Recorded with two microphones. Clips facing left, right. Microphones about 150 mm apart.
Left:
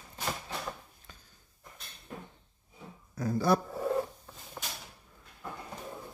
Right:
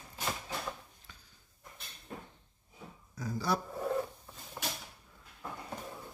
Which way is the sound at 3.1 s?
55° left (ahead or behind).